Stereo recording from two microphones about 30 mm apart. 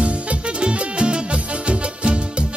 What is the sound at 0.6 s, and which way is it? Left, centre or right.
Music, right.